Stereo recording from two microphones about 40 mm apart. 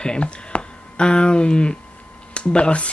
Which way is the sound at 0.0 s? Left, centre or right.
Left.